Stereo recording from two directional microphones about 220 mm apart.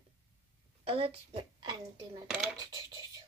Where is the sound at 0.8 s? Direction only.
25° right (ahead or behind).